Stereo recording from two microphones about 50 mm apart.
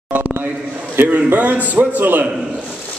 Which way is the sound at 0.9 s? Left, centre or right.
Right.